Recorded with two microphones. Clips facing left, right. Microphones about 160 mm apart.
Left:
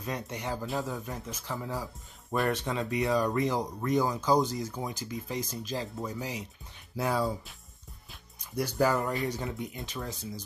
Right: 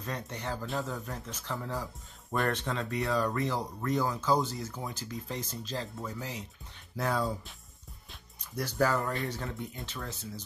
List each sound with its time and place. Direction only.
0.0 s speech: 10° left (ahead or behind)
8.5 s speech: 15° left (ahead or behind)